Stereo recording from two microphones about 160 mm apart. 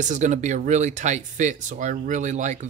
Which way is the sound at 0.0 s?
50° right (ahead or behind).